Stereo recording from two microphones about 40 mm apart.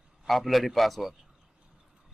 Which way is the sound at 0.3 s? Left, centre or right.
Centre.